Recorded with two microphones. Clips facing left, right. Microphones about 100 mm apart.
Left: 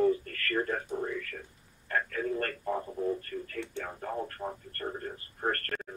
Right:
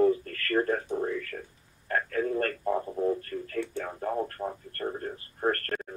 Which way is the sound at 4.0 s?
40° right (ahead or behind).